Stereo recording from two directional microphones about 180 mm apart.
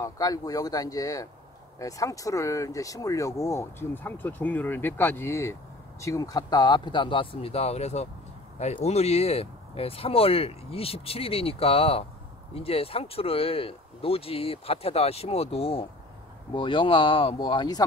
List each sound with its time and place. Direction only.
0.0 s speech: 20° left (ahead or behind)